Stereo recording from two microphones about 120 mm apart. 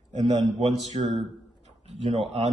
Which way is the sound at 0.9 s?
50° right (ahead or behind).